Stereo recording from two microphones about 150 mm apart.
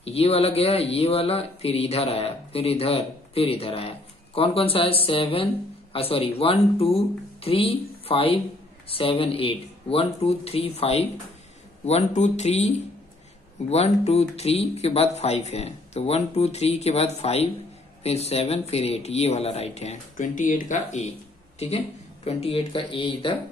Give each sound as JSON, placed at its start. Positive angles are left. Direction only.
{"t": 0.0, "sound": "speech", "side_deg": 40}